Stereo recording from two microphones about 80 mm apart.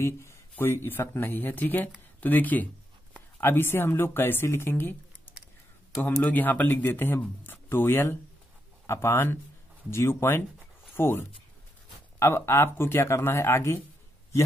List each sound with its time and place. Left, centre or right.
0.0 s speech: left